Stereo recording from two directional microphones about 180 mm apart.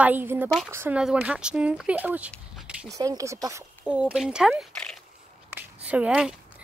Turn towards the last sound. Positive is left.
turn(degrees=-5)  # may be behind; listen again after turning